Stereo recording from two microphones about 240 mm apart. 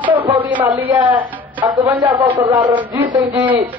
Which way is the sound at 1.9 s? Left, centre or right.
Centre.